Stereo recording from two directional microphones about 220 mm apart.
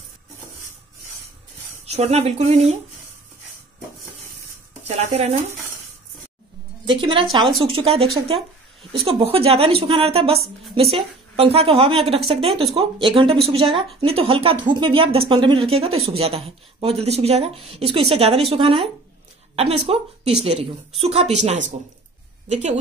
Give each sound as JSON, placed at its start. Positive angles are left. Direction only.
{"t": 1.9, "sound": "speech", "side_deg": -30}
{"t": 4.8, "sound": "speech", "side_deg": -30}
{"t": 6.9, "sound": "a woman's voice", "side_deg": -25}